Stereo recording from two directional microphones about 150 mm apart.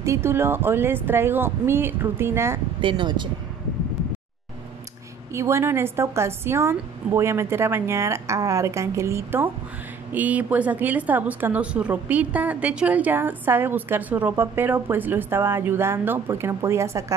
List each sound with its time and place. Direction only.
0.0 s a woman's voice: 20° right (ahead or behind)
2.8 s speech: 30° right (ahead or behind)
5.3 s a woman's voice: 20° right (ahead or behind)